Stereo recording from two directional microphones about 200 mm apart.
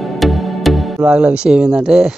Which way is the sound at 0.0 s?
Centre (ahead or behind).